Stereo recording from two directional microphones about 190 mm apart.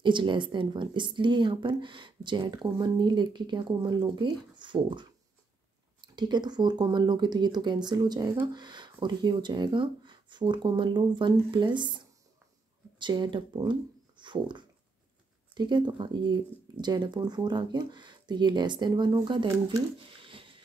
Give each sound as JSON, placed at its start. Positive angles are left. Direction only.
{"t": 0.0, "sound": "speech", "side_deg": -25}
{"t": 6.1, "sound": "speech", "side_deg": -20}
{"t": 13.0, "sound": "speech", "side_deg": -25}